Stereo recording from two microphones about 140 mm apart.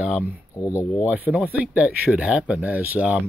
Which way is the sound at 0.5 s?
20° left (ahead or behind).